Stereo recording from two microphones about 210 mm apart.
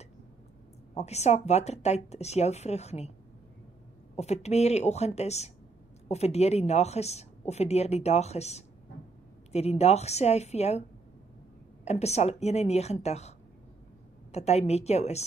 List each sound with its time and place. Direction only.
0.9 s a woman's voice: 30° left (ahead or behind)
4.2 s a woman's voice: 30° left (ahead or behind)
11.8 s a woman's voice: 30° left (ahead or behind)
14.3 s a woman's voice: 30° left (ahead or behind)